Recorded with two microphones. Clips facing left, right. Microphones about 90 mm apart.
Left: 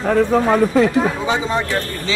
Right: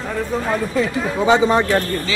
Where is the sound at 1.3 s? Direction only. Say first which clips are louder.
Right 5 dB; 60° right (ahead or behind).